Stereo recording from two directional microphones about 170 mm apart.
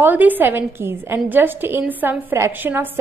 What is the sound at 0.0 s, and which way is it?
A woman's voice, 10° right (ahead or behind).